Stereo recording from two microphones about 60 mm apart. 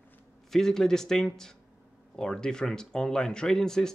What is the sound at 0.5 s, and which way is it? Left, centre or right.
Speech, centre.